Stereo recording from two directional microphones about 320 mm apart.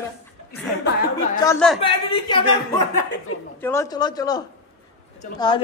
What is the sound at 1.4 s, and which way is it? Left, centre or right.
Speech, centre.